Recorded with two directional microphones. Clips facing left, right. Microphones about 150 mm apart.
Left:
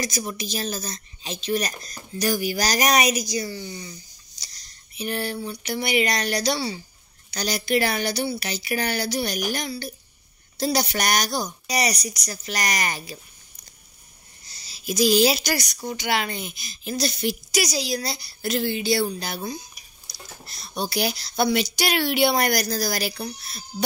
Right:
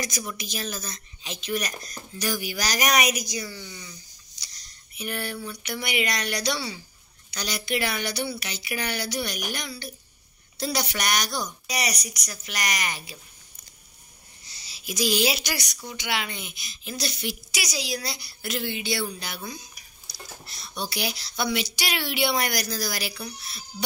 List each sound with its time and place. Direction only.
0.0 s speech: 35° left (ahead or behind)
4.9 s speech: 30° left (ahead or behind)
14.4 s speech: 40° left (ahead or behind)